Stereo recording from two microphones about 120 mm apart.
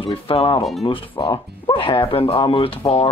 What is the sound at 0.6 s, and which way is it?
Speech, centre (ahead or behind).